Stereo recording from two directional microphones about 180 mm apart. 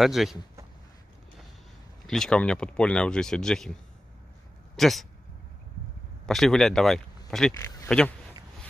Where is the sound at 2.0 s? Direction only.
5° left (ahead or behind).